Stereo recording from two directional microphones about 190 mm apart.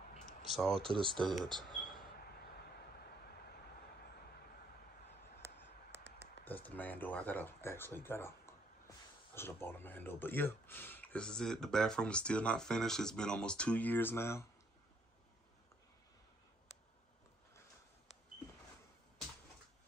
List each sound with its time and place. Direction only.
0.5 s speech: centre (ahead or behind)
0.9 s speech: 25° right (ahead or behind)
1.3 s a sound: centre (ahead or behind)
6.4 s speech: 10° left (ahead or behind)